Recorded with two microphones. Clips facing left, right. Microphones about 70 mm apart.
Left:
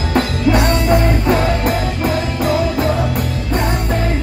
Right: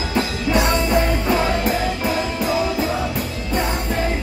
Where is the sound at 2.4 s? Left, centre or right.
Left.